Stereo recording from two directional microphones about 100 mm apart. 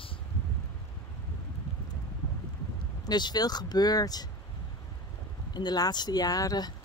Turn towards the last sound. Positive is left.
turn(degrees=40)  # may be behind; listen again after turning